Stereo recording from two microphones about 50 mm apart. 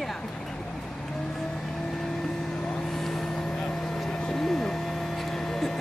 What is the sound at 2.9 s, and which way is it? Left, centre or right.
Vehicle, centre.